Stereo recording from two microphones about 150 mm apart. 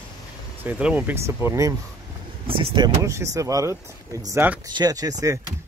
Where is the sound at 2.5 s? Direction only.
35° right (ahead or behind).